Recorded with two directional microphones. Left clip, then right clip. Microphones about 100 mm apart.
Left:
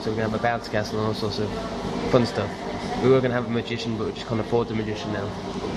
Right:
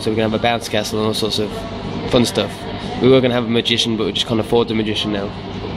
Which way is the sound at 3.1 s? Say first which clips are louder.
Right 7 dB; 30° right (ahead or behind).